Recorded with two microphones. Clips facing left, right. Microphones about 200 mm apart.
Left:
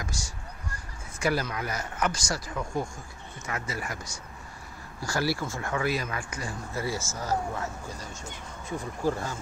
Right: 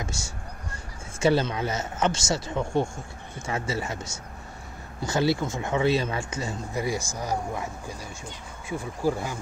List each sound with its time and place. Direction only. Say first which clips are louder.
0.0 s speech: right 3 dB; 25° right (ahead or behind)